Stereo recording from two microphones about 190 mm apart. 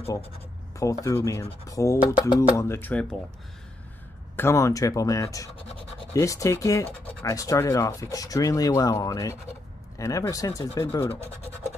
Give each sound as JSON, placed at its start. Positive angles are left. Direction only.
{"t": 0.7, "sound": "speech", "side_deg": 15}
{"t": 4.4, "sound": "speech", "side_deg": 15}